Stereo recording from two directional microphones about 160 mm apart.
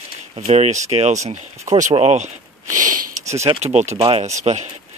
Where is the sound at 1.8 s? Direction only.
45° right (ahead or behind).